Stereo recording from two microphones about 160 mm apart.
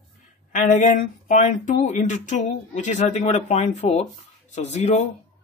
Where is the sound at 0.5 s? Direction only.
55° left (ahead or behind).